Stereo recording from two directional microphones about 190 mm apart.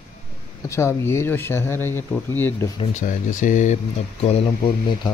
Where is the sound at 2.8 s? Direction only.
40° left (ahead or behind).